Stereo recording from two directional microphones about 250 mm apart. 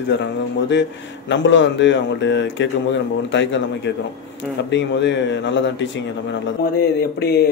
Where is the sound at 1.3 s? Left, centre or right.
Left.